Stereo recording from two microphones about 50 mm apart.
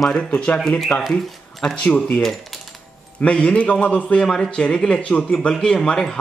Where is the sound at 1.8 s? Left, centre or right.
Left.